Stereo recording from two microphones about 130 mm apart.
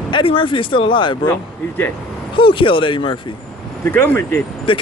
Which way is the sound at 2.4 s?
40° left (ahead or behind).